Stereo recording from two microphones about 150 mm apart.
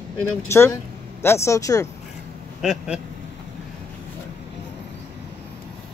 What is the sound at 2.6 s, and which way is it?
Speech, 5° right (ahead or behind).